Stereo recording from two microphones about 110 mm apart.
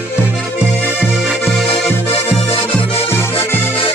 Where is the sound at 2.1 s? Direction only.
60° left (ahead or behind).